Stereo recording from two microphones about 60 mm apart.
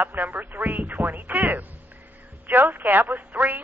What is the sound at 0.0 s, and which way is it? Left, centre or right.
A man's voice, right.